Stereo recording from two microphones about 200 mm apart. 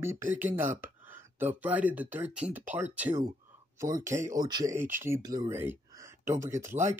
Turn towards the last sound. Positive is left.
turn(degrees=-15)  # may be behind; listen again after turning